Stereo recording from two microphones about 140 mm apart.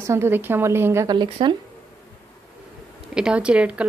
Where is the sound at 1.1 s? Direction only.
30° right (ahead or behind).